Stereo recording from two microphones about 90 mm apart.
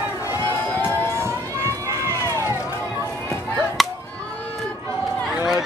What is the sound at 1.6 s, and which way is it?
Run, 35° right (ahead or behind).